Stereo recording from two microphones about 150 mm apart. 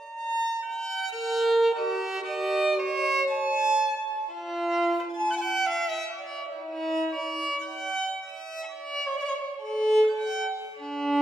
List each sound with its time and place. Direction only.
0.6 s violin: centre (ahead or behind)